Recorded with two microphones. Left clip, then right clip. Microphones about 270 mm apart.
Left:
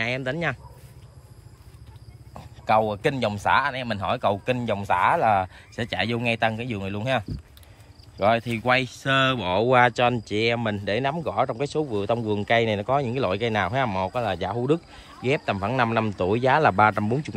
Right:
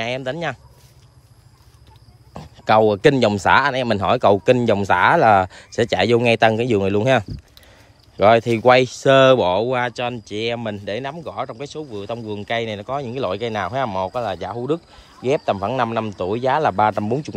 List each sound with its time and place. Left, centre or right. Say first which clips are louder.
0.0 s speech: right 2 dB; centre
2.3 s speech: right 6 dB; right
9.5 s speech: even; centre